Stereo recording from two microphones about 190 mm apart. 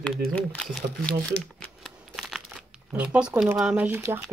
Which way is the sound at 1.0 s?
5° left (ahead or behind).